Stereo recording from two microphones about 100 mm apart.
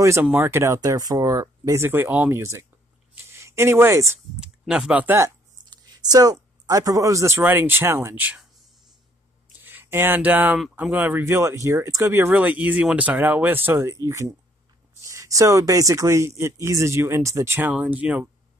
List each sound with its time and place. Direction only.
0.4 s speech: 30° right (ahead or behind)
1.8 s speech: 20° right (ahead or behind)
4.4 s speech: 10° right (ahead or behind)
5.0 s speech: 25° right (ahead or behind)
5.7 s speech: 40° right (ahead or behind); by 8.4 s 20° right (ahead or behind)
9.5 s a sound: 20° right (ahead or behind)
10.8 s speech: 15° right (ahead or behind)
11.2 s speech: 30° right (ahead or behind)
17.6 s speech: 15° right (ahead or behind)